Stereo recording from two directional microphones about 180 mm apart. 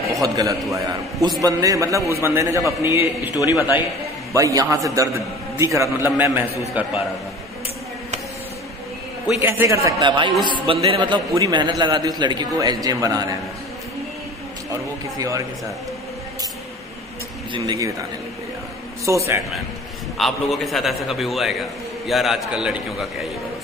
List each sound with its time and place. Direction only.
0.1 s a man's voice: 20° right (ahead or behind)
9.4 s a man's voice: 15° right (ahead or behind)
9.8 s a man's voice: 25° right (ahead or behind)
15.1 s a man's voice: 20° right (ahead or behind)
17.5 s a man's voice: 20° right (ahead or behind)
19.0 s a man's voice: 15° right (ahead or behind)
20.2 s a man's voice: centre (ahead or behind)